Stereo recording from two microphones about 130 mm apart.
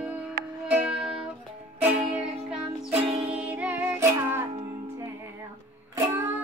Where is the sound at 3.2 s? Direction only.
10° right (ahead or behind).